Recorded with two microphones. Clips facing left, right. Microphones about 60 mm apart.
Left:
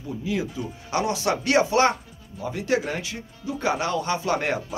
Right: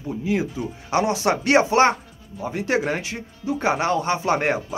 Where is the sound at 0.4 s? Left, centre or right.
Right.